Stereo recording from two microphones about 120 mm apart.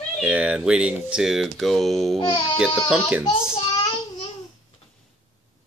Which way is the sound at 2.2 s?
40° left (ahead or behind).